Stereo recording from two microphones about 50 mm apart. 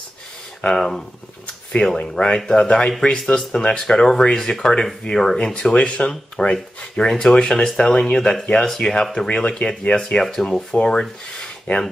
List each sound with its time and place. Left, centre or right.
0.6 s speech: centre
10.2 s speech: centre
11.7 s speech: left